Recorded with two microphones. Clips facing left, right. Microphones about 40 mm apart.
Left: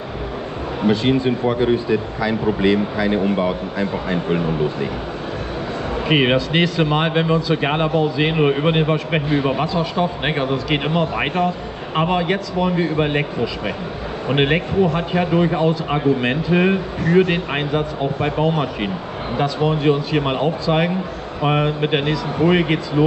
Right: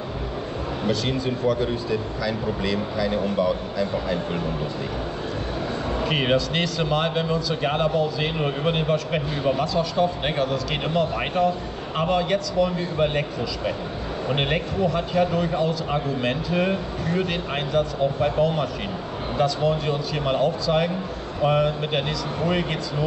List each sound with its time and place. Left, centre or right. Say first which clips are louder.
0.8 s speech: left 8 dB; left
6.0 s speech: left 6 dB; left